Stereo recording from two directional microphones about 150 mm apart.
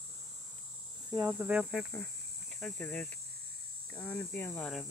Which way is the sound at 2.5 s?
5° left (ahead or behind).